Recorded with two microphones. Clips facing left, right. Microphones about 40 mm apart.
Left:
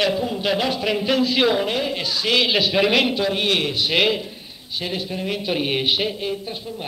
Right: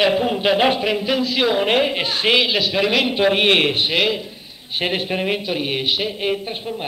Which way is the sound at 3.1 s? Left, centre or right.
Right.